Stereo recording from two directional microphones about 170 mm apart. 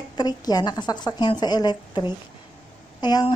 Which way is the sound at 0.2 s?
25° left (ahead or behind).